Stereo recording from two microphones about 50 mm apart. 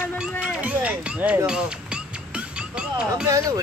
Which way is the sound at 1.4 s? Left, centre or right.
Centre.